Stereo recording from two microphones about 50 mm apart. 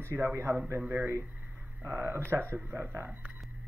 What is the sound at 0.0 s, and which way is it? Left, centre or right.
Speech, right.